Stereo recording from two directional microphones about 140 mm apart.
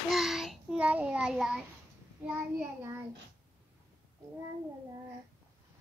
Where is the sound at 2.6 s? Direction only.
20° right (ahead or behind).